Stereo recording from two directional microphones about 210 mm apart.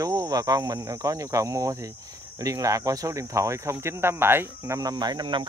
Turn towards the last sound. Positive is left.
turn(degrees=-20)  # may be behind; listen again after turning